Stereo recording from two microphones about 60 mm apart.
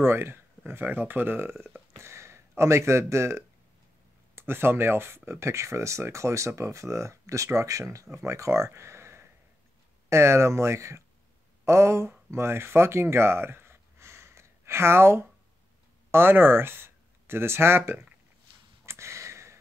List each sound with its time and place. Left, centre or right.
0.0 s speech: right
2.0 s speech: right
4.4 s speech: right
8.2 s speech: right
12.3 s gasp: right
16.1 s speech: right
18.9 s a sound: right